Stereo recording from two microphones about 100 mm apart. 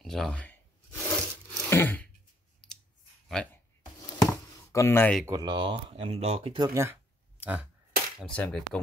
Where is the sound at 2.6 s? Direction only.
5° left (ahead or behind).